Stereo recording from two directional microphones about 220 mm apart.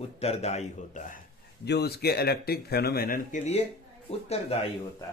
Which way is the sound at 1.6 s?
50° left (ahead or behind).